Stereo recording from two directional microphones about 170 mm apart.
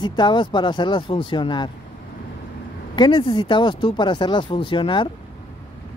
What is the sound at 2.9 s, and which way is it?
Speech, 30° left (ahead or behind).